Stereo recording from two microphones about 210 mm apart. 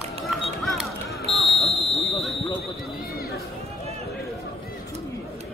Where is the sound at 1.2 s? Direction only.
30° left (ahead or behind).